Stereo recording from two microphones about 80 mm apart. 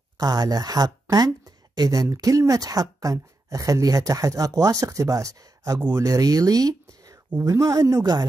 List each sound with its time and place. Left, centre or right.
0.2 s speech: right